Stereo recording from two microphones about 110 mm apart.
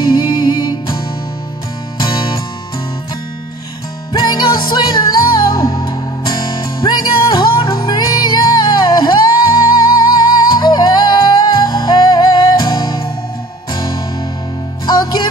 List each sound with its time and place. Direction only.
0.1 s music: 40° left (ahead or behind)
4.1 s music: 40° left (ahead or behind)
14.9 s music: 40° left (ahead or behind)